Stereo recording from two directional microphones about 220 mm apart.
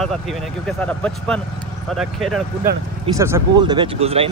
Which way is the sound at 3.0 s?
15° right (ahead or behind).